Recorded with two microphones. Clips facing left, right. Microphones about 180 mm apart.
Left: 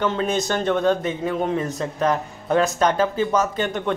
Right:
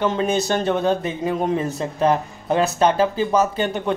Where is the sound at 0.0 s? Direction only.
15° right (ahead or behind).